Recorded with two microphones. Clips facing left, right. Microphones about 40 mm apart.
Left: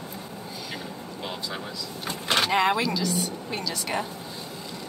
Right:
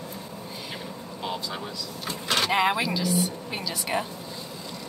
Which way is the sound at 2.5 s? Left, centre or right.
Centre.